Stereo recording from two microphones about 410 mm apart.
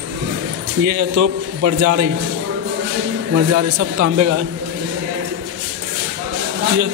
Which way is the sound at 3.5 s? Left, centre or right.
Right.